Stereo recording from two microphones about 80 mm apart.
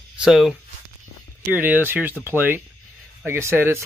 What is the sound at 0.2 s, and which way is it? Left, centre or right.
Speech, centre.